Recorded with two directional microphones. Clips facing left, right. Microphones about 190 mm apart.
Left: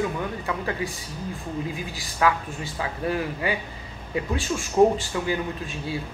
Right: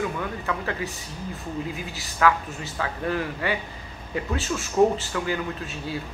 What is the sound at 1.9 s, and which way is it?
A woman's voice, 15° left (ahead or behind).